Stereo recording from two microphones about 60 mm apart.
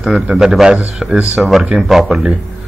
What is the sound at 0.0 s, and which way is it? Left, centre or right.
A man's voice, centre.